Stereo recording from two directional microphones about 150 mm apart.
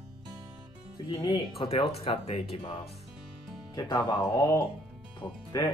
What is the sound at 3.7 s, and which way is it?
Speech, 30° left (ahead or behind).